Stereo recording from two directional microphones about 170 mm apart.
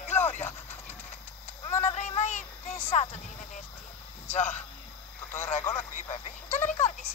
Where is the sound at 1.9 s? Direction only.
40° left (ahead or behind).